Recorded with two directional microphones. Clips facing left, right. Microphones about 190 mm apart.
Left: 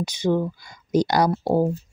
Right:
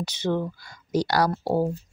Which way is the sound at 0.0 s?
10° left (ahead or behind).